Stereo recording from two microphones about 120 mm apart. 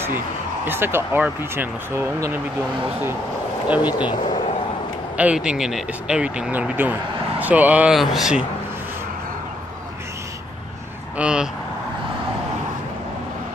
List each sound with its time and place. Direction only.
0.7 s speech: 20° right (ahead or behind)
3.6 s speech: 10° right (ahead or behind)
5.1 s speech: 10° right (ahead or behind)
7.9 s speech: centre (ahead or behind)
11.1 s speech: 10° right (ahead or behind)